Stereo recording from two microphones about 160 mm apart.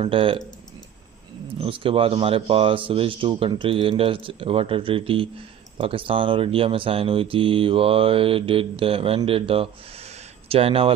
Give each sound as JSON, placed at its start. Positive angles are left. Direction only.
{"t": 0.0, "sound": "speech", "side_deg": -35}
{"t": 1.6, "sound": "speech", "side_deg": -35}